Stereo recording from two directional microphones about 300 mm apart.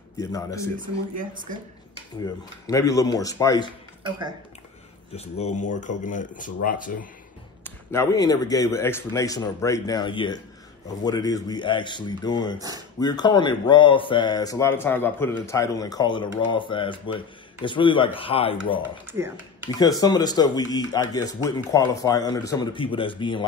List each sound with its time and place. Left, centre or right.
0.2 s a man's voice: centre
0.7 s speech: right
2.6 s a man's voice: centre
5.1 s speech: left
7.6 s a man's voice: centre
12.5 s speech: centre
13.0 s a man's voice: centre
18.8 s speech: centre
19.8 s a man's voice: centre